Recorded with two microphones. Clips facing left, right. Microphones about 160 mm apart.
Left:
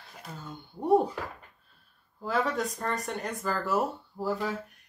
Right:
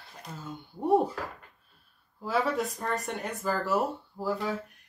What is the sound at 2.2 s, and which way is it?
Speech, 5° right (ahead or behind).